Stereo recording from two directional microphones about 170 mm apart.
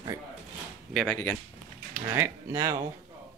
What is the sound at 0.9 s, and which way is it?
Speech, 5° left (ahead or behind).